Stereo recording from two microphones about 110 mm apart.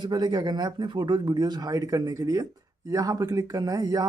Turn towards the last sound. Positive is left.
turn(degrees=-35)  # may be behind; listen again after turning